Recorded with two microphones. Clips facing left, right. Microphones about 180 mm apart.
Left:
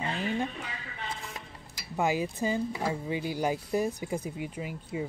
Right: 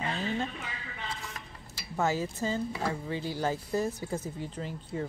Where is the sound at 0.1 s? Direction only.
15° left (ahead or behind).